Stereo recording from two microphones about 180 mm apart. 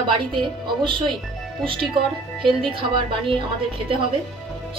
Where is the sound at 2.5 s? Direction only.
30° right (ahead or behind).